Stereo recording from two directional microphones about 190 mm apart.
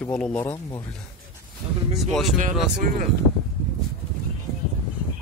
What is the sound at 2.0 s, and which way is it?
Speech, centre (ahead or behind).